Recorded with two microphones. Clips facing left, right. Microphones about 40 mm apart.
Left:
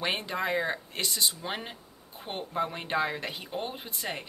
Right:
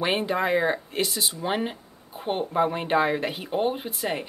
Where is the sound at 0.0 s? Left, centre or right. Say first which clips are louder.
Right 6 dB; centre.